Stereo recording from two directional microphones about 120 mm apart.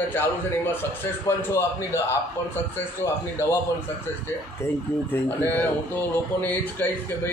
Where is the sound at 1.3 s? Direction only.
25° left (ahead or behind).